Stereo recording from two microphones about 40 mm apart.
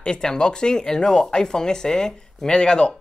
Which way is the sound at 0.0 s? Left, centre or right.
Centre.